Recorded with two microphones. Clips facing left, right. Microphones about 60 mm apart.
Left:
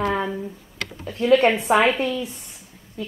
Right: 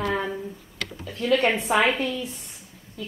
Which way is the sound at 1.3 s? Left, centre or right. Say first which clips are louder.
Left 5 dB; centre.